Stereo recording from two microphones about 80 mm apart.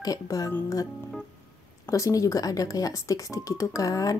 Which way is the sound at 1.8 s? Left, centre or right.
Left.